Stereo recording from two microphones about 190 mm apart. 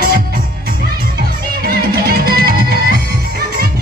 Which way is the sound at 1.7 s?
50° right (ahead or behind).